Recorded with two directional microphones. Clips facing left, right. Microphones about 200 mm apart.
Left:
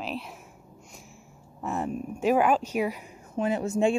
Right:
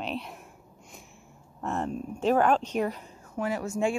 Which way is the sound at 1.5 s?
5° left (ahead or behind).